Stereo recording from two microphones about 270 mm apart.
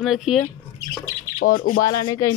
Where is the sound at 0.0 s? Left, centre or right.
Centre.